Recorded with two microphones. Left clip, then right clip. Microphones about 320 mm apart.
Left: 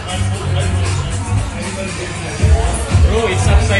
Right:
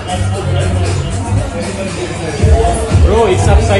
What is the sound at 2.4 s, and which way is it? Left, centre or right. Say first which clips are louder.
Music: right 9 dB; centre.